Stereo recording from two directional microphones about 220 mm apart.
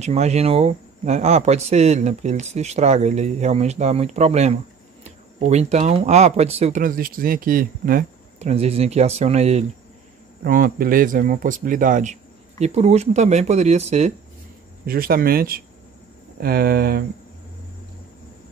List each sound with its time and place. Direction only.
0.0 s speech: 30° right (ahead or behind)
10.4 s speech: 40° right (ahead or behind)
14.9 s speech: 40° right (ahead or behind)